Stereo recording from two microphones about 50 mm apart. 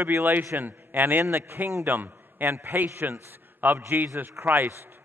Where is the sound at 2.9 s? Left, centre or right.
Right.